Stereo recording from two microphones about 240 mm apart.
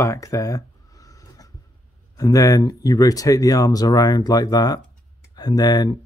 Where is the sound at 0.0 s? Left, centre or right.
Centre.